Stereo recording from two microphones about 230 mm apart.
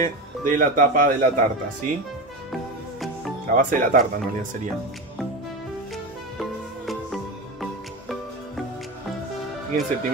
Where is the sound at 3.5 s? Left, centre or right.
Right.